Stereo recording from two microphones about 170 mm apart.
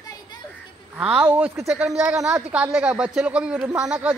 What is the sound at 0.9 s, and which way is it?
Speech, 10° right (ahead or behind).